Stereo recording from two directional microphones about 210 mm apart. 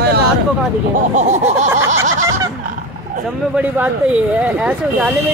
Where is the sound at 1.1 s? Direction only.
35° right (ahead or behind).